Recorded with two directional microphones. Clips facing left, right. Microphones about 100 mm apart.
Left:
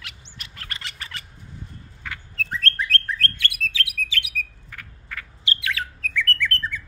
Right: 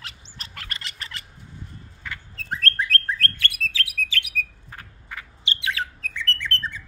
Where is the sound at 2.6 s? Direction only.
40° right (ahead or behind).